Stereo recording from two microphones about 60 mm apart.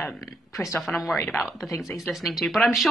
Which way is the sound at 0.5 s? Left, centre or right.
Left.